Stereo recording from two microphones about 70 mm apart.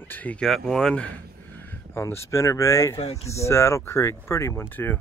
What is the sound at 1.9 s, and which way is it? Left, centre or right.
Speech, left.